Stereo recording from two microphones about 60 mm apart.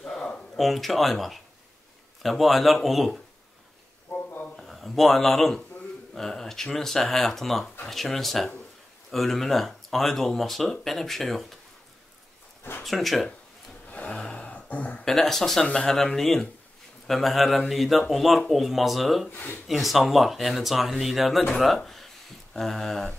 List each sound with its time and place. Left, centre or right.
0.0 s a sound: centre
2.2 s speech: centre
4.1 s a sound: left
4.6 s speech: centre
12.8 s speech: centre
13.8 s a sound: centre
15.0 s speech: centre
19.2 s speech: left
19.7 s speech: centre